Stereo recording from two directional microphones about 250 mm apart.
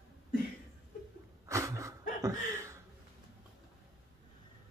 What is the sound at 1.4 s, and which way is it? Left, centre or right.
Dog, centre.